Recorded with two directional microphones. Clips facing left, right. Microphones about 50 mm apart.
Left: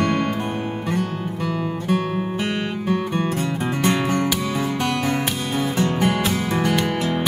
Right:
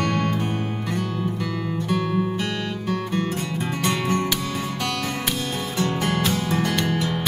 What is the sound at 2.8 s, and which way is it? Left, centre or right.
Music, left.